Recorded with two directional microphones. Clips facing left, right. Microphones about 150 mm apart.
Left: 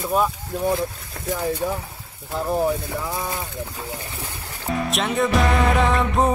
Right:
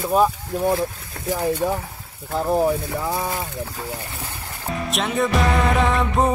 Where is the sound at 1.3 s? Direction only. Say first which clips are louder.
Right 3 dB; centre (ahead or behind).